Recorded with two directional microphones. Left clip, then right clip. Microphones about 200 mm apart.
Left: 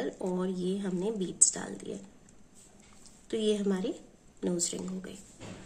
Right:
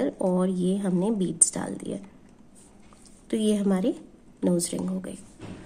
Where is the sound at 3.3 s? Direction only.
40° right (ahead or behind).